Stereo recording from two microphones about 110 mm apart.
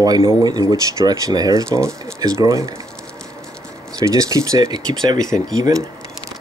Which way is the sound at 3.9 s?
35° right (ahead or behind).